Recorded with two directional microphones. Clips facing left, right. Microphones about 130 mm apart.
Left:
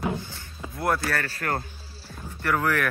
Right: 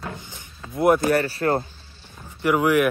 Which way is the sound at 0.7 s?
20° right (ahead or behind).